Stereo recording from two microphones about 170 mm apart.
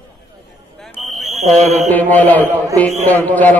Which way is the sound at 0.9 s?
Centre (ahead or behind).